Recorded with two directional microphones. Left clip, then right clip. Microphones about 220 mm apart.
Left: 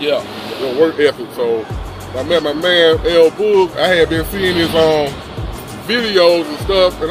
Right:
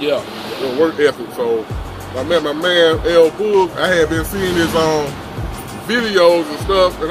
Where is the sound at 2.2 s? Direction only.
15° left (ahead or behind).